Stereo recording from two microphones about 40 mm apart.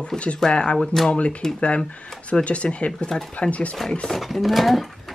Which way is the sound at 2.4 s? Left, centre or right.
Left.